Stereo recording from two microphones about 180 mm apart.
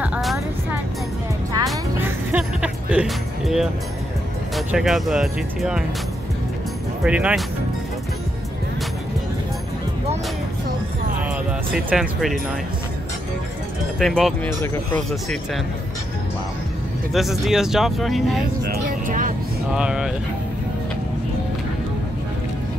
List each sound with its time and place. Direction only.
0.0 s music: 5° right (ahead or behind)
2.0 s music: 5° right (ahead or behind)
4.6 s speech: centre (ahead or behind)
7.0 s speech: 5° right (ahead or behind)
11.7 s speech: 5° right (ahead or behind)
13.9 s speech: centre (ahead or behind)
17.1 s speech: centre (ahead or behind)
18.7 s vehicle: 50° right (ahead or behind)
19.7 s speech: 5° right (ahead or behind)